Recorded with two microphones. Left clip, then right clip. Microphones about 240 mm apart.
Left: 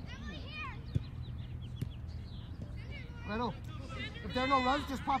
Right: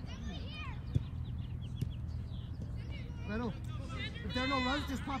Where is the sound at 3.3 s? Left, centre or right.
Left.